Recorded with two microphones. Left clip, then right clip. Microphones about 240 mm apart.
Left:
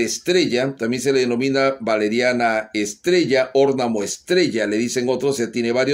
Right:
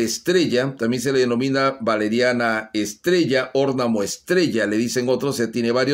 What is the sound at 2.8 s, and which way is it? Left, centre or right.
Speech, right.